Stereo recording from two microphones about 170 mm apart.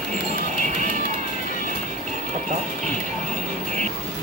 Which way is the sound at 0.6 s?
45° right (ahead or behind).